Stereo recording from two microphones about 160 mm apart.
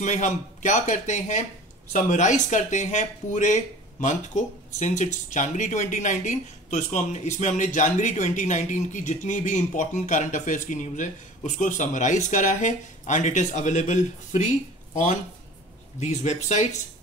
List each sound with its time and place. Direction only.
0.0 s speech: 50° left (ahead or behind)
16.0 s speech: 45° left (ahead or behind)